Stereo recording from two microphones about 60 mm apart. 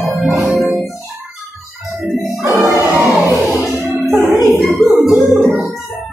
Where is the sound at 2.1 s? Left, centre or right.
Right.